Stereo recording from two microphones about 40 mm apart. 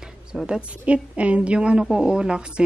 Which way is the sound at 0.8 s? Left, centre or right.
Right.